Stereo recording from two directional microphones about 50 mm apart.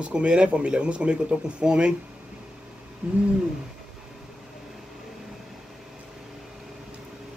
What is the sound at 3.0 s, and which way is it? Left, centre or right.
Owl, right.